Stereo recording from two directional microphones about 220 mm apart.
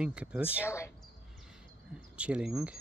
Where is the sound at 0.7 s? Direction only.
10° left (ahead or behind).